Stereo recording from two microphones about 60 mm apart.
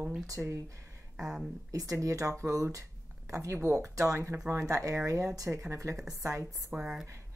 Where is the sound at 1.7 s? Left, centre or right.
Right.